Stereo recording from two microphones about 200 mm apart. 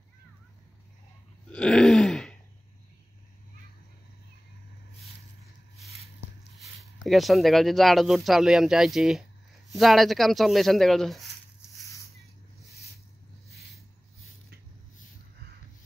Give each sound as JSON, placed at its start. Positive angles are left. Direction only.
{"t": 1.5, "sound": "throat clearing", "side_deg": 5}
{"t": 6.6, "sound": "speech", "side_deg": 0}